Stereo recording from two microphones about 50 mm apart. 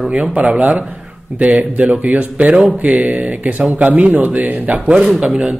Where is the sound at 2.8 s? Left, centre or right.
Right.